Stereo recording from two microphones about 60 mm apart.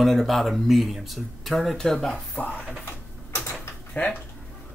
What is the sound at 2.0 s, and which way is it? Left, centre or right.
Speech, centre.